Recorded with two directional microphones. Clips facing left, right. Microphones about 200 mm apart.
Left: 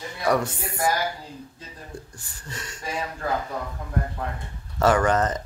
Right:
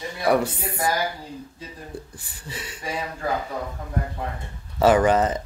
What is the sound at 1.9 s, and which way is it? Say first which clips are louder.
Chuckle: right 3 dB; 35° right (ahead or behind).